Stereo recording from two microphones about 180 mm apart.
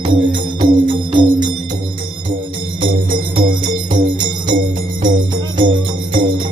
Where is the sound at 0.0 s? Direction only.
25° right (ahead or behind).